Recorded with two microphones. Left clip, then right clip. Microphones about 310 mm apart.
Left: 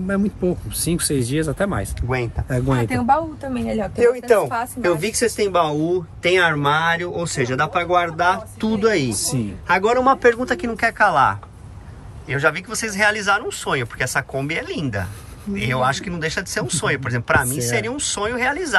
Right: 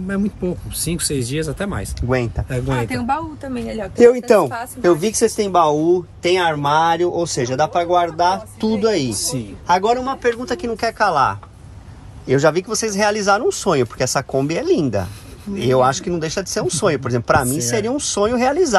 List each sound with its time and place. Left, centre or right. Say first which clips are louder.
0.0 s a woman's voice: left 2 dB; centre
3.1 s a woman's voice: left 3 dB; centre
4.8 s speech: right 5 dB; centre
9.1 s speech: right 1 dB; left
9.7 s speech: left 1 dB; centre